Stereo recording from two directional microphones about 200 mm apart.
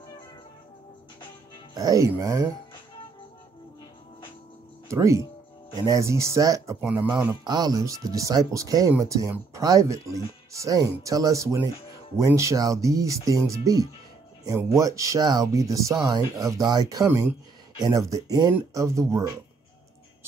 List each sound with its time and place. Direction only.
1.7 s speech: 20° right (ahead or behind)
4.8 s speech: 15° right (ahead or behind)
7.4 s speech: 20° right (ahead or behind)